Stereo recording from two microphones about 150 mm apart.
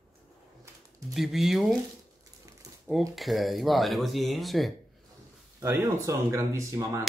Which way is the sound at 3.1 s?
Centre (ahead or behind).